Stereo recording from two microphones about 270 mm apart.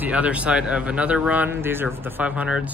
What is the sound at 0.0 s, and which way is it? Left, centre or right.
Speech, centre.